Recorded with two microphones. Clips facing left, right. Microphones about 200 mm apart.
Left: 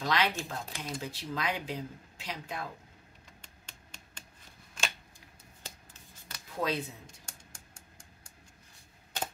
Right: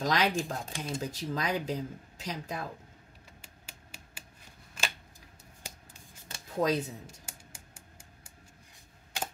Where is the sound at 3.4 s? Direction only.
10° right (ahead or behind).